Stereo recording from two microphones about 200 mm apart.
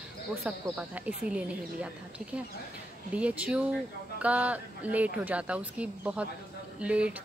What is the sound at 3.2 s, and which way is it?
Speech, 5° right (ahead or behind).